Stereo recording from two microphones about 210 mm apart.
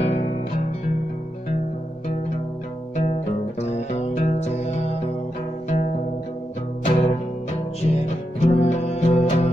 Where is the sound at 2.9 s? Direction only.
35° left (ahead or behind).